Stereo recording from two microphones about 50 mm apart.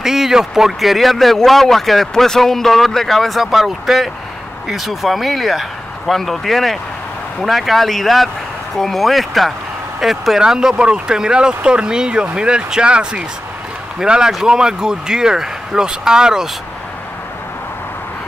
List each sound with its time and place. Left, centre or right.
0.0 s a man's voice: centre